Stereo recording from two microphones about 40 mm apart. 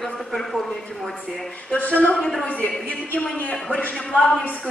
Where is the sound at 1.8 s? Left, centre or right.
Left.